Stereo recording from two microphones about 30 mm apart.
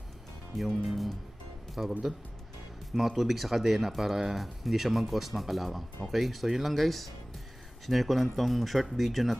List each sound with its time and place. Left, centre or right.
0.8 s speech: centre
1.8 s speech: right
2.9 s speech: centre